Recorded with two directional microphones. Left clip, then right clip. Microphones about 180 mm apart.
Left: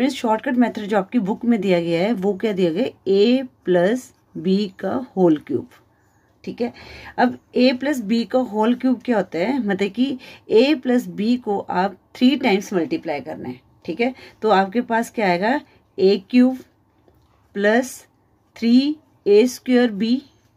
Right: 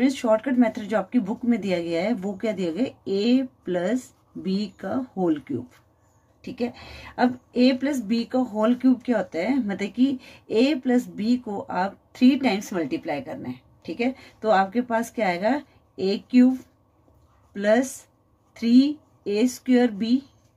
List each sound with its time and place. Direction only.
0.0 s a woman's voice: 30° left (ahead or behind)
6.4 s a woman's voice: 20° left (ahead or behind)
17.5 s a woman's voice: 30° left (ahead or behind)